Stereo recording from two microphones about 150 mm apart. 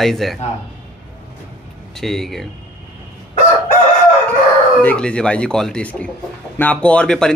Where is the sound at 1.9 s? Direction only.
Centre (ahead or behind).